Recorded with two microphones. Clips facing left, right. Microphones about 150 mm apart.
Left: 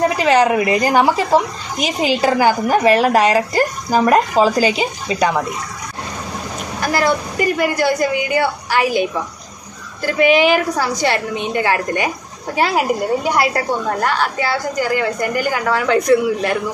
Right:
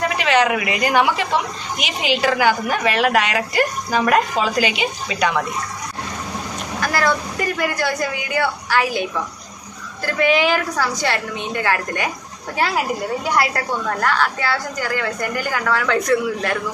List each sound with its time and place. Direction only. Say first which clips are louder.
0.2 s speech: left 3 dB; 35° left (ahead or behind)
6.9 s a woman's voice: left 3 dB; 20° left (ahead or behind)